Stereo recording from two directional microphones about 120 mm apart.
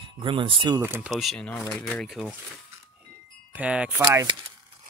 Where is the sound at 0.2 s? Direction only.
45° right (ahead or behind).